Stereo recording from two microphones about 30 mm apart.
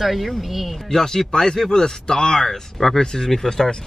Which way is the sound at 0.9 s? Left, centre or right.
Centre.